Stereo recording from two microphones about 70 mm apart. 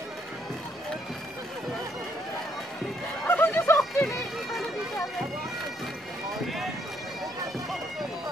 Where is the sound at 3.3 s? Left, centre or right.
Left.